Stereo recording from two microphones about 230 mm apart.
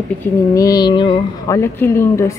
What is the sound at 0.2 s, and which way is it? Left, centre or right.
Speech, centre.